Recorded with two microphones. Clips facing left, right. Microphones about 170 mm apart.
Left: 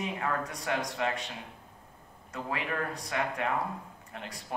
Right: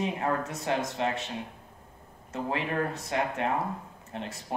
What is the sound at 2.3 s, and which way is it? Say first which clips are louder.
Speech: right 4 dB; 25° right (ahead or behind).